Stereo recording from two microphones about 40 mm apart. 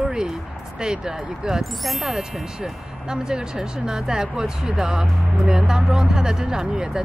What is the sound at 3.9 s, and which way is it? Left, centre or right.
Speech, centre.